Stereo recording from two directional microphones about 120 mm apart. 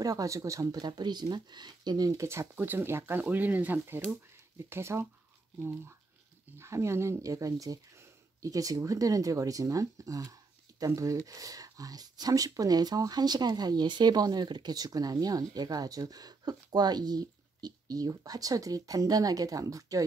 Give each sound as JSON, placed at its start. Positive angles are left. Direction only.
{"t": 0.0, "sound": "speech", "side_deg": -30}